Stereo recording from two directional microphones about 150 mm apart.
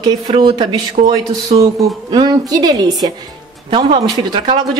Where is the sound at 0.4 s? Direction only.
30° right (ahead or behind).